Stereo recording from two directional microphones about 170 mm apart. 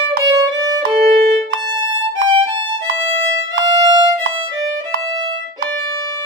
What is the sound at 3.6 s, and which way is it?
Violin, 25° right (ahead or behind).